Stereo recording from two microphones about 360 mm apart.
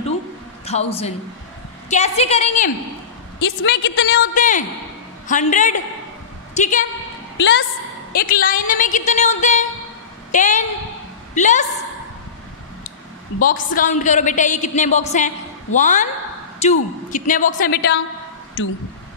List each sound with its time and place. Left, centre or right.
0.7 s a woman's voice: centre
3.4 s a woman's voice: left
4.3 s a woman's voice: left
7.3 s a woman's voice: left
13.4 s a woman's voice: left